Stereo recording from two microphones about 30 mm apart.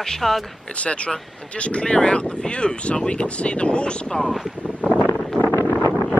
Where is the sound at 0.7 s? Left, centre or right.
Left.